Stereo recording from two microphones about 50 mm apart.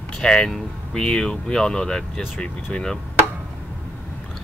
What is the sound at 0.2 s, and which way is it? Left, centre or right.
Speech, centre.